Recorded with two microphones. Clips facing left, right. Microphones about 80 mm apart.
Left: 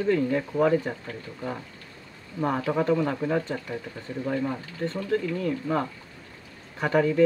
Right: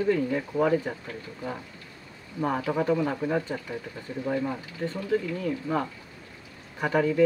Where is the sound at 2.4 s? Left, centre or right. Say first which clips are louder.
Left 1 dB; centre.